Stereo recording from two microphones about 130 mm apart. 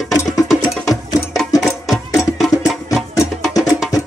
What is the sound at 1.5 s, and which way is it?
Music, centre (ahead or behind).